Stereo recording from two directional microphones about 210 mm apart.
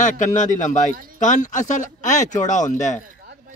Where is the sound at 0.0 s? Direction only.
35° left (ahead or behind).